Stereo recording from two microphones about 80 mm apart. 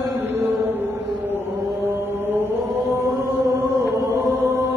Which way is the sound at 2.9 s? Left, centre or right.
Right.